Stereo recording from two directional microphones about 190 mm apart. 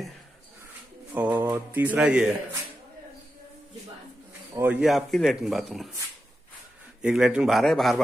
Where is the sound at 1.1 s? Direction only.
10° right (ahead or behind).